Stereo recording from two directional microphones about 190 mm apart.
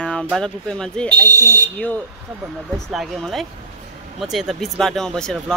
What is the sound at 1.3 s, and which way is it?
Speech, 15° right (ahead or behind).